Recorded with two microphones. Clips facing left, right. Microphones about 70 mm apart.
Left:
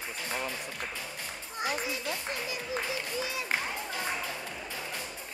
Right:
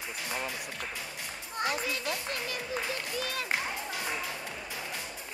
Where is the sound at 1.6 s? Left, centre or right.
Right.